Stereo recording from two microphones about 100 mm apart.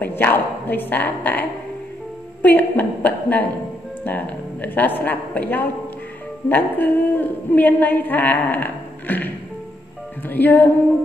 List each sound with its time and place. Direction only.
0.0 s a woman's voice: 20° left (ahead or behind)